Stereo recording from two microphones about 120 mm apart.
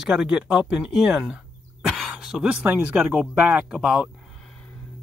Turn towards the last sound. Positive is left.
turn(degrees=-5)  # may be behind; listen again after turning